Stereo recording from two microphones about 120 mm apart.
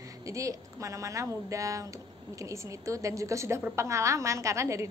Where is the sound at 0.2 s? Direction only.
25° right (ahead or behind).